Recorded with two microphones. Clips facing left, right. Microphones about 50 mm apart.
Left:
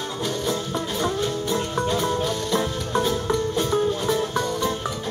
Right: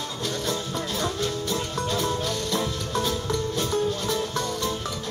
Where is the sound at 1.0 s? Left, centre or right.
Left.